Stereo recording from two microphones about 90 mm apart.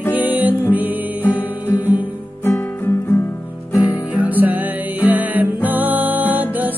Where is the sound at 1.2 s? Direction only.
20° left (ahead or behind).